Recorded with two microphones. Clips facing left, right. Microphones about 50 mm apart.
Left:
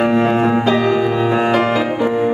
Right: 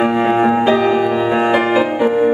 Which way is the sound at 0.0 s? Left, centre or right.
Centre.